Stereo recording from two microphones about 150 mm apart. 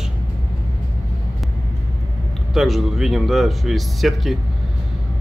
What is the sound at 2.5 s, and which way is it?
A man's voice, centre (ahead or behind).